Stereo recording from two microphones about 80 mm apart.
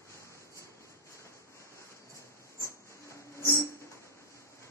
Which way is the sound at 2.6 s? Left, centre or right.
Left.